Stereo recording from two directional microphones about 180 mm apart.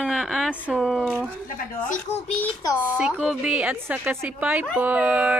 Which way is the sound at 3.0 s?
5° right (ahead or behind).